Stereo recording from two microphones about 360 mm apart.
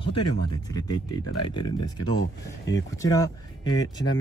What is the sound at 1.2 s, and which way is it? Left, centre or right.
Speech, left.